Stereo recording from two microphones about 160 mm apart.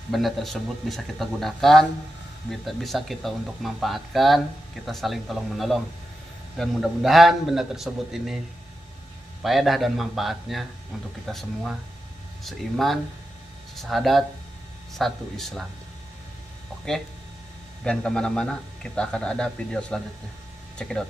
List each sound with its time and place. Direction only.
0.1 s a man's voice: centre (ahead or behind)
9.4 s a man's voice: centre (ahead or behind)
17.8 s a man's voice: 5° left (ahead or behind)